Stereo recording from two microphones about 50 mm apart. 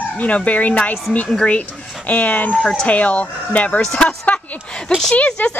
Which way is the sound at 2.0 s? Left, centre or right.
Left.